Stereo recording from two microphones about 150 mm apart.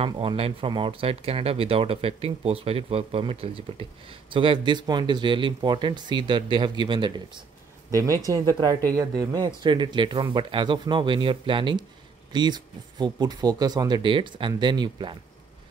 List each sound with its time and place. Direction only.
0.0 s speech: 40° right (ahead or behind)